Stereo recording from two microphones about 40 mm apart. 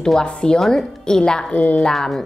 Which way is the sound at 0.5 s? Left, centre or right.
Centre.